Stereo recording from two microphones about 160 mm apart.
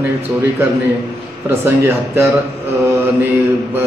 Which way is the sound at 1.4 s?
15° right (ahead or behind).